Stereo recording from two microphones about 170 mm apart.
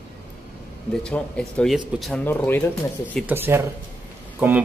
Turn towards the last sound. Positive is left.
turn(degrees=-10)  # may be behind; listen again after turning